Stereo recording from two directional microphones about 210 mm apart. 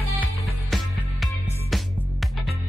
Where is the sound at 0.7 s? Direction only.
Centre (ahead or behind).